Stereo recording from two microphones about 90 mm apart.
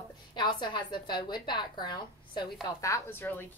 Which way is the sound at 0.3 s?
55° left (ahead or behind).